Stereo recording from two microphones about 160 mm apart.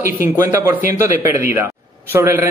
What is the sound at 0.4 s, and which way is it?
Speech, 20° right (ahead or behind).